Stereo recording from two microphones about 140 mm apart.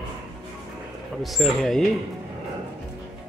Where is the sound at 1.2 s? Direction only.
Centre (ahead or behind).